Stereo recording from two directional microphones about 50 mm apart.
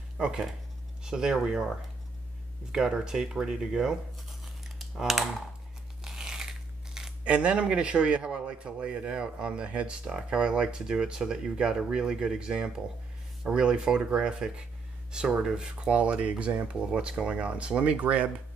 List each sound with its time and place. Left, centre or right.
0.2 s speech: centre
2.7 s speech: centre
4.9 s typing: centre
6.0 s a sound: centre
7.2 s speech: right